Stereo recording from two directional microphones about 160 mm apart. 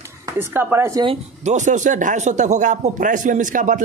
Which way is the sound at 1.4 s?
50° right (ahead or behind).